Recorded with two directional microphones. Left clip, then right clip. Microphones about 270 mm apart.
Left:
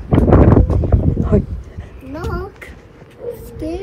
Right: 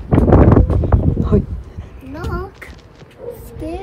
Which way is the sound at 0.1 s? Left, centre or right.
Centre.